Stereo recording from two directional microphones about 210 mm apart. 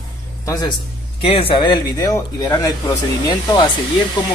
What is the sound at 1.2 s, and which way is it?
Speech, 25° left (ahead or behind).